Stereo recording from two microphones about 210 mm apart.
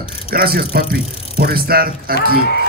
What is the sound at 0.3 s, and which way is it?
Speech, 45° right (ahead or behind).